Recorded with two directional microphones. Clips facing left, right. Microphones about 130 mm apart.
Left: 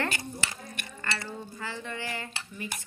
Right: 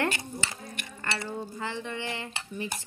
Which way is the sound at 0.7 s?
20° right (ahead or behind).